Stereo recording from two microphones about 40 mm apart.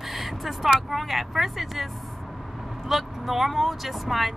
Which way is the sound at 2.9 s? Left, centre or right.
Centre.